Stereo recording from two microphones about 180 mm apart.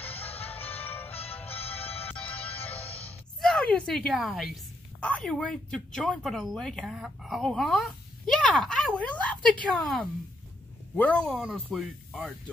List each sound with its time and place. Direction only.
0.0 s music: 35° left (ahead or behind)
0.8 s music: 10° left (ahead or behind)
1.1 s music: 35° left (ahead or behind)
2.0 s music: 10° left (ahead or behind)
2.8 s music: 35° left (ahead or behind)
3.3 s a woman's voice: 5° left (ahead or behind)